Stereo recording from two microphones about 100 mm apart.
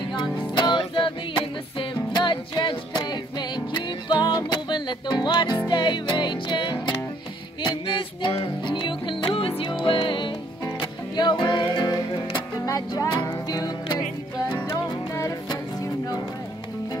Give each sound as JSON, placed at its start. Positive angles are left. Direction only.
{"t": 0.6, "sound": "music", "side_deg": 50}
{"t": 12.6, "sound": "music", "side_deg": 35}